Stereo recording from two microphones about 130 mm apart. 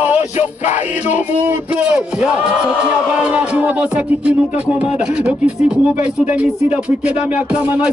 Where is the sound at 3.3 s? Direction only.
10° right (ahead or behind).